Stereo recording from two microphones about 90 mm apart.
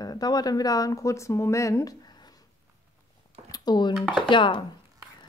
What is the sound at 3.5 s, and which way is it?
Speech, 50° left (ahead or behind).